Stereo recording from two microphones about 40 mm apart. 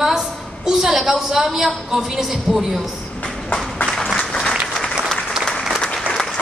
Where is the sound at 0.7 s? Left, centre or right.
Centre.